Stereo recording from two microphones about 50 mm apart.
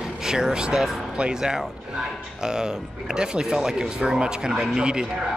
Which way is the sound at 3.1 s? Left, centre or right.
Centre.